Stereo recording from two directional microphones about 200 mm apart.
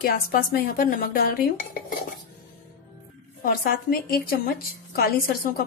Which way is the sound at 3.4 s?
50° left (ahead or behind).